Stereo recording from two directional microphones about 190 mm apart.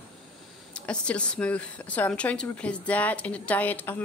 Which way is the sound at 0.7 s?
5° left (ahead or behind).